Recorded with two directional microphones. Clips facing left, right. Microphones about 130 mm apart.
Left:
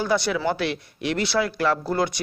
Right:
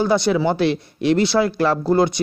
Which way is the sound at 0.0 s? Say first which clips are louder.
Right 5 dB; 25° right (ahead or behind).